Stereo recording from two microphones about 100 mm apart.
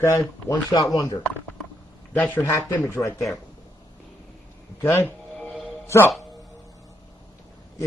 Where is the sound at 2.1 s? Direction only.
15° left (ahead or behind).